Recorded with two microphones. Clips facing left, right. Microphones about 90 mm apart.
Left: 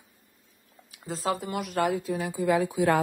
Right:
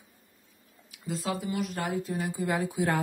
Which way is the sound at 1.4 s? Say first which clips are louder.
Left 4 dB; 60° left (ahead or behind).